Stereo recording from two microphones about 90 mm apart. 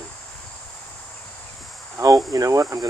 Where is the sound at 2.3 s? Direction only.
40° right (ahead or behind).